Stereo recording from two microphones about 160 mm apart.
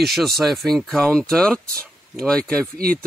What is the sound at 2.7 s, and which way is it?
Speech, 65° right (ahead or behind).